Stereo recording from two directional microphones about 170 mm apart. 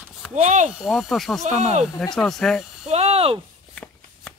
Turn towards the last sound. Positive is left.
turn(degrees=-35)  # may be behind; listen again after turning